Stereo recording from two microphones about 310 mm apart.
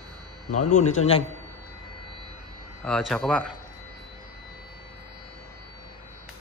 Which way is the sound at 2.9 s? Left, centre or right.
Centre.